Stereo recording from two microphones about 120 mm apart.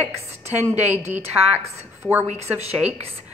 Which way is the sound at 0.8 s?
70° right (ahead or behind).